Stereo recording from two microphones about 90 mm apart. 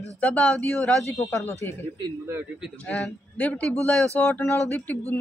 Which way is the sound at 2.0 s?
30° right (ahead or behind).